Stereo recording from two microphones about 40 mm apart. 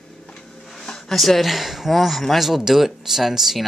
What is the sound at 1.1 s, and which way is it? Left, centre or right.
Speech, centre.